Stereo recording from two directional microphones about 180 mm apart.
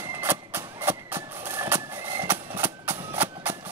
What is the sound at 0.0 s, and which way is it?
Vehicle, 15° right (ahead or behind).